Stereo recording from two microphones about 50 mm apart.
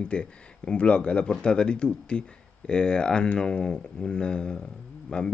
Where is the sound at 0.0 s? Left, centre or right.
Left.